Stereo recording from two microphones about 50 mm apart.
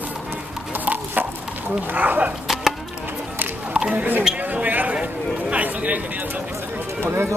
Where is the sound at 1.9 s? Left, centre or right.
Right.